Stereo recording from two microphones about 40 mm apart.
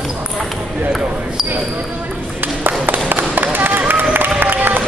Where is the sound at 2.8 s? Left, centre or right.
Right.